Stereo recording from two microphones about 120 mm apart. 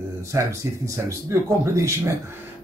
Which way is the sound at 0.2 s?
25° right (ahead or behind).